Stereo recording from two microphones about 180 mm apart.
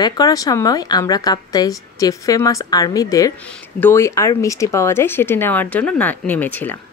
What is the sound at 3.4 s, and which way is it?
Speech, 10° left (ahead or behind).